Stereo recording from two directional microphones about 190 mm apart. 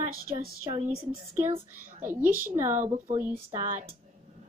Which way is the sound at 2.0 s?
10° right (ahead or behind).